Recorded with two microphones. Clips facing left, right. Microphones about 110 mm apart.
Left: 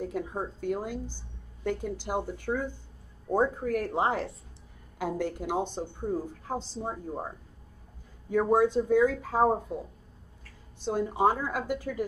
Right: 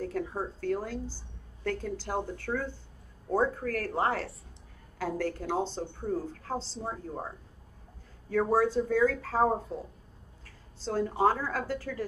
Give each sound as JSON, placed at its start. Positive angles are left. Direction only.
{"t": 0.0, "sound": "a woman's voice", "side_deg": 15}